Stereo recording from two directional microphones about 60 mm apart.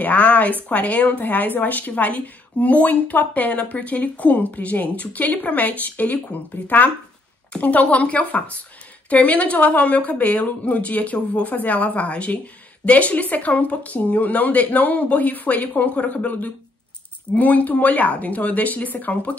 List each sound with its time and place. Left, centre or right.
0.0 s a woman's voice: left